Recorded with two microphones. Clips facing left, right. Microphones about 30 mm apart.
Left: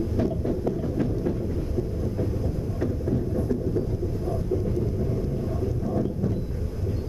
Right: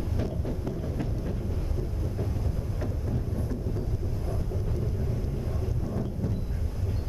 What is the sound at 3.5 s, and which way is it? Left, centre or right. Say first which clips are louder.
Vehicle: left 8 dB; centre.